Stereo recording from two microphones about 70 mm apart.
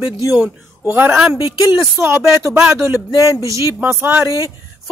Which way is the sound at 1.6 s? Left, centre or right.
Right.